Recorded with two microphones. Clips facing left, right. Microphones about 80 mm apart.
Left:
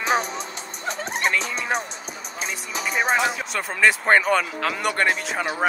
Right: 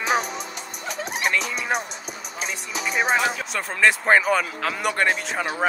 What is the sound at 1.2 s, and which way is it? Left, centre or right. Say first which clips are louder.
Speech: even; centre.